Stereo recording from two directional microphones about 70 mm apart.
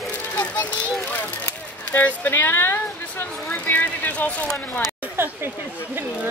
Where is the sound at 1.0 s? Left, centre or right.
Left.